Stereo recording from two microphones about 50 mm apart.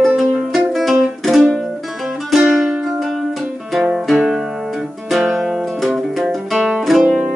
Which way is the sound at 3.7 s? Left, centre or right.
Centre.